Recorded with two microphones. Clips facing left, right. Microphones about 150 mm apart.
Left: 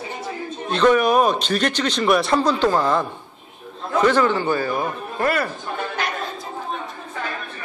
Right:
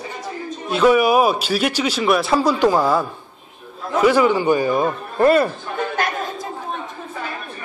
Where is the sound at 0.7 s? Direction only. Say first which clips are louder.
Right 2 dB; 10° right (ahead or behind); by 5.5 s 25° right (ahead or behind).